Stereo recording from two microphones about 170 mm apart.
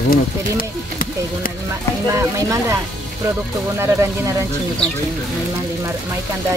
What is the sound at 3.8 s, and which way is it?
Speech, 15° right (ahead or behind).